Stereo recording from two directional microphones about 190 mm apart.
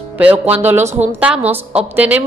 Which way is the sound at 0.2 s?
10° right (ahead or behind).